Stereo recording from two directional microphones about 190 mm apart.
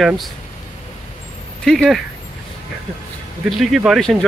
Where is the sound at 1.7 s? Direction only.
5° left (ahead or behind).